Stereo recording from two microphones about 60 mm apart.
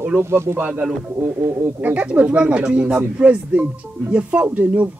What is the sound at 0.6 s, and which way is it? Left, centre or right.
Speech, right.